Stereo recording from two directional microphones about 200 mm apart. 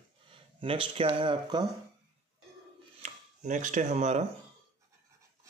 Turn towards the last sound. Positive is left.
turn(degrees=-35)  # may be behind; listen again after turning